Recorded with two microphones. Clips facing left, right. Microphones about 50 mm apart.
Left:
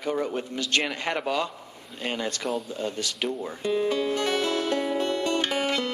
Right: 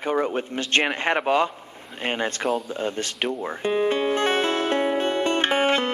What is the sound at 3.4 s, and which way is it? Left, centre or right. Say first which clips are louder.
Music: right 4 dB; right.